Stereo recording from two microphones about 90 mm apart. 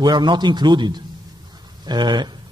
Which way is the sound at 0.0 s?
55° right (ahead or behind).